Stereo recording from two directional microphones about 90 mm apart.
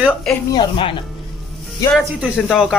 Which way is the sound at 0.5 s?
70° left (ahead or behind).